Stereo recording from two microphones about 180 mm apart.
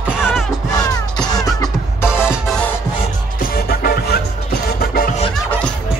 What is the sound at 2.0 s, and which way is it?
Music, 5° right (ahead or behind).